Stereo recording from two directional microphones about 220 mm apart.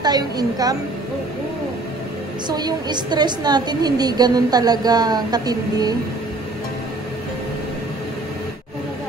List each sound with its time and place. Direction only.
0.0 s a woman's voice: 20° right (ahead or behind)
2.4 s a woman's voice: 20° right (ahead or behind)